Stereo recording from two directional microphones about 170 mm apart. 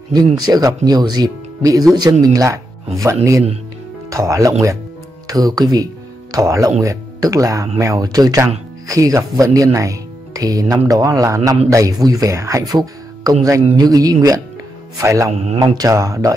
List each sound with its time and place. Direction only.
0.1 s speech: 20° right (ahead or behind)
15.3 s speech: 40° right (ahead or behind)
15.6 s speech: 20° right (ahead or behind)